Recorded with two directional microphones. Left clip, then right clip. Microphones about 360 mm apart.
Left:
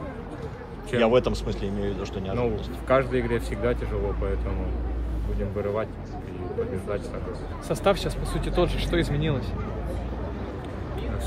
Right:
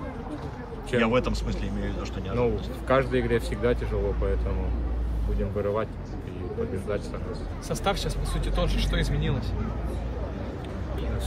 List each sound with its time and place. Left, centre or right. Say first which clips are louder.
0.9 s a man's voice: left 3 dB; centre
5.6 s a man's voice: even; centre
7.6 s speech: left 5 dB; left